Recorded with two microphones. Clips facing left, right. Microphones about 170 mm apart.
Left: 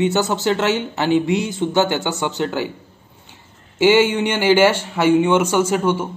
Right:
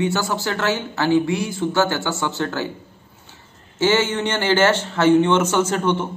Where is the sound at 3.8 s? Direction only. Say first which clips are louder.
Left 5 dB; 15° left (ahead or behind).